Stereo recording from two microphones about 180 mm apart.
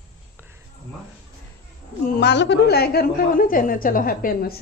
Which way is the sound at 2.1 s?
70° left (ahead or behind).